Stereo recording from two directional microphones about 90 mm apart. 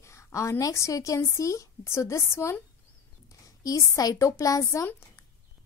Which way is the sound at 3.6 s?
35° left (ahead or behind).